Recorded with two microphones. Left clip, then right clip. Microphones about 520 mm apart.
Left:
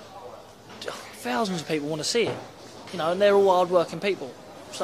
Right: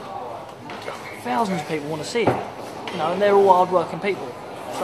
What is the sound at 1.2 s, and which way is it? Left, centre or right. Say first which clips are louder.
Speech: right 4 dB; left.